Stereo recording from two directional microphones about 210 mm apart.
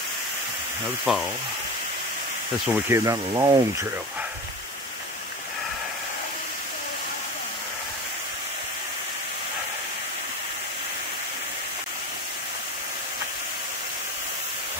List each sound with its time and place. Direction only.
1.0 s speech: centre (ahead or behind)
2.7 s speech: 15° right (ahead or behind)